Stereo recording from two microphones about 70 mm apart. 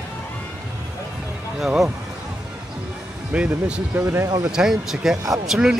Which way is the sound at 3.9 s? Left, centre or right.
Right.